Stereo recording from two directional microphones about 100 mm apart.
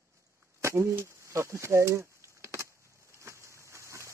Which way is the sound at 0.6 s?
30° right (ahead or behind).